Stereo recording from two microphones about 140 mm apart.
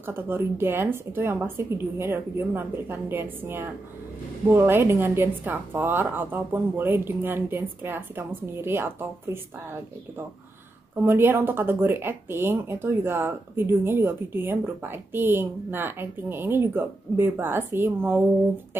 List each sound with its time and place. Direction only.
0.0 s speech: 15° right (ahead or behind)
11.1 s speech: 15° right (ahead or behind)